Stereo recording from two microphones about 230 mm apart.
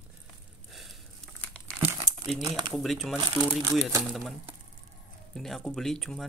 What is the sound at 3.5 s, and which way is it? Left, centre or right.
Speech, centre.